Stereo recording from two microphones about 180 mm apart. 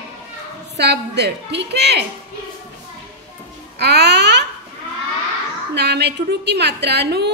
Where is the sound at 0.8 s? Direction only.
65° right (ahead or behind).